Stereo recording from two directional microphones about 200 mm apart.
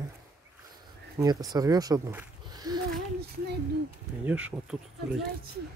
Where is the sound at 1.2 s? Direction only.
20° right (ahead or behind).